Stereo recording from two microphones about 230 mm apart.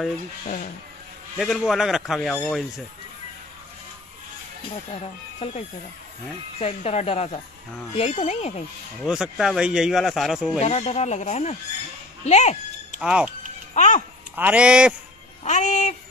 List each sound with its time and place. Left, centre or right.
1.4 s speech: centre
5.0 s speech: left
6.6 s speech: left
9.0 s speech: centre
10.6 s speech: left
12.3 s a sound: left
13.0 s speech: centre
13.7 s music: left
14.3 s speech: centre
15.4 s music: left